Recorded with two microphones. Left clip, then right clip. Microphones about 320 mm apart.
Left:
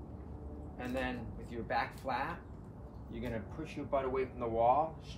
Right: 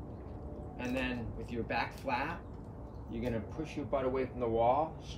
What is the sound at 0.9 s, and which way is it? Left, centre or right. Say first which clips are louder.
A man's voice: even; centre.